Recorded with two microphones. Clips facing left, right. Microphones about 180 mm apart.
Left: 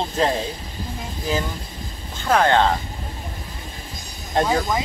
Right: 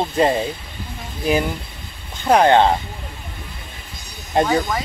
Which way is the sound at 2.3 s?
20° right (ahead or behind).